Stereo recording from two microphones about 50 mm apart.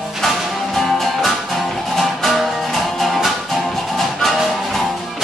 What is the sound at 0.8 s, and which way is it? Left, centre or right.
Music, centre.